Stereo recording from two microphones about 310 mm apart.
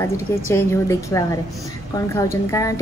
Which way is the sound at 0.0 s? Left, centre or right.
Centre.